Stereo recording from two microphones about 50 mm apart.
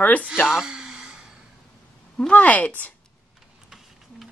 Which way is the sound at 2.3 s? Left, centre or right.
Left.